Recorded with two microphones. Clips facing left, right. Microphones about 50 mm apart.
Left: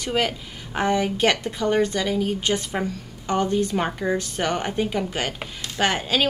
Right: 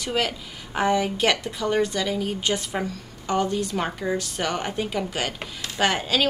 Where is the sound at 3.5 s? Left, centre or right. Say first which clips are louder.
Left 3 dB; left; by 6.2 s centre.